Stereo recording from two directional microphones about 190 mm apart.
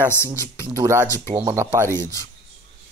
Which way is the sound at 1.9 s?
15° left (ahead or behind).